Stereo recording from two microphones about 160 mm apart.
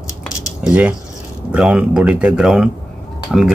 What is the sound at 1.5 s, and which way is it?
Speech, 5° right (ahead or behind).